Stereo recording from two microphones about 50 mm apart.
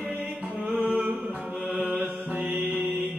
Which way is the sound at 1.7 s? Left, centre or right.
Right.